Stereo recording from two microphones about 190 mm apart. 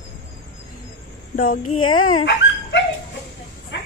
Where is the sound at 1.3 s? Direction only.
50° left (ahead or behind).